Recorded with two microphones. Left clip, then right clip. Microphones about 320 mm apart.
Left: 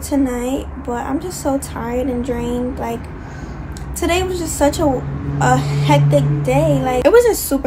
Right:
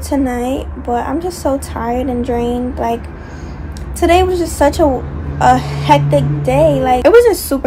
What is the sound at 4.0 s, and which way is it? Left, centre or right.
A woman's voice, centre.